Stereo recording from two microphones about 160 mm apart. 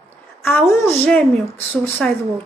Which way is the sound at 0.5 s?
15° left (ahead or behind).